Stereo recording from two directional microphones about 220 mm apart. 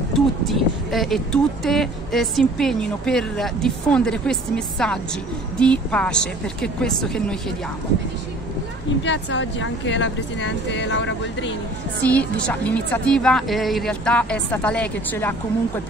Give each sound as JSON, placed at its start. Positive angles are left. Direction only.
{"t": 0.1, "sound": "speech", "side_deg": 0}
{"t": 9.0, "sound": "speech", "side_deg": 55}
{"t": 12.0, "sound": "speech", "side_deg": 5}